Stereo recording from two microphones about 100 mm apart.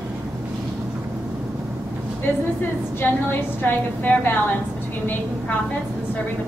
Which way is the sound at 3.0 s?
15° left (ahead or behind).